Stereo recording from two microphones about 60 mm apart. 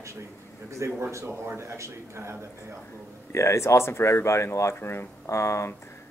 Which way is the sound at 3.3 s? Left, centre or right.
Left.